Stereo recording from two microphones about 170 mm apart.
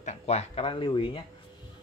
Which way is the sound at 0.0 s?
45° left (ahead or behind).